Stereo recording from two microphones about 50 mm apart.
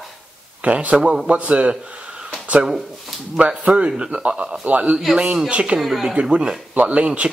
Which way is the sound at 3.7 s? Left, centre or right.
Right.